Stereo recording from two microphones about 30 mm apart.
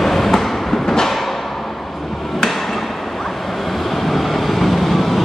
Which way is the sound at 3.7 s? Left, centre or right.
Centre.